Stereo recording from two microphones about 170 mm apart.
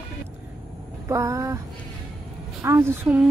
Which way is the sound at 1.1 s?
20° right (ahead or behind).